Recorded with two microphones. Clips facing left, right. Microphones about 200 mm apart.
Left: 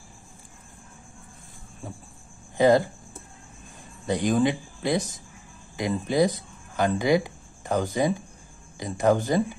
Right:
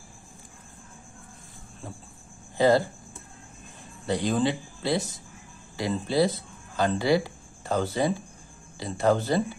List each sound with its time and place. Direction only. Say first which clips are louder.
2.5 s speech: left 2 dB; 20° left (ahead or behind)
4.0 s speech: left 2 dB; 20° left (ahead or behind)